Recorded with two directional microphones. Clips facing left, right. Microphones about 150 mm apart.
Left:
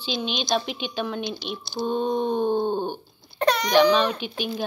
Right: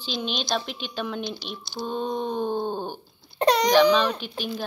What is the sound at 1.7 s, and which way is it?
Wail, 25° left (ahead or behind).